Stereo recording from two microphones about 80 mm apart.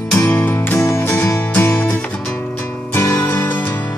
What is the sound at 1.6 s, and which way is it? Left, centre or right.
Music, left.